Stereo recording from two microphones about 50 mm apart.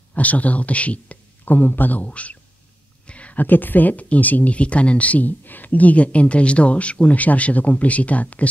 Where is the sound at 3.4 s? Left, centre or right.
Left.